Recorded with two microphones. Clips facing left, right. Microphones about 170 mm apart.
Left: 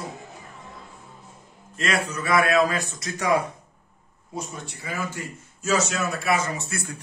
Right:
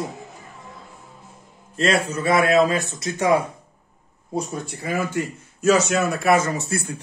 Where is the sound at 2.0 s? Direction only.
30° right (ahead or behind).